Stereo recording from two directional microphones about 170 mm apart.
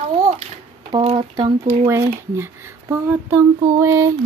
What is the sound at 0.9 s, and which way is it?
Speech, 35° right (ahead or behind).